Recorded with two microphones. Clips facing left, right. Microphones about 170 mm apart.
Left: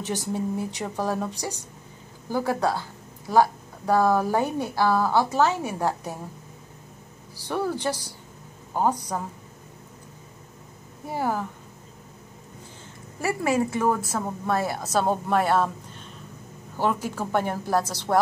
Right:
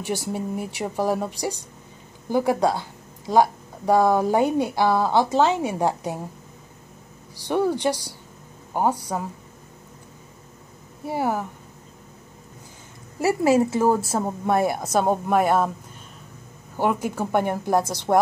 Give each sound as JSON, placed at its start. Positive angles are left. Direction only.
{"t": 0.0, "sound": "speech", "side_deg": -10}
{"t": 7.4, "sound": "a woman's voice", "side_deg": -20}
{"t": 11.1, "sound": "speech", "side_deg": -10}
{"t": 13.2, "sound": "a woman's voice", "side_deg": -25}